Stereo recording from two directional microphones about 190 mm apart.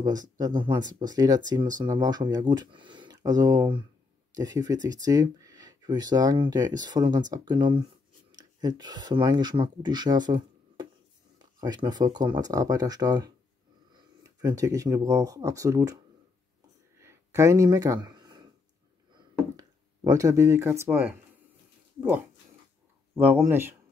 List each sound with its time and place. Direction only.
0.0 s speech: 20° right (ahead or behind)
17.0 s a sound: 15° right (ahead or behind)
23.1 s speech: 10° right (ahead or behind)